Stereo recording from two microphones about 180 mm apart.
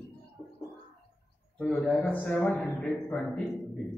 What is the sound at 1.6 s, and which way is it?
Speech, centre (ahead or behind).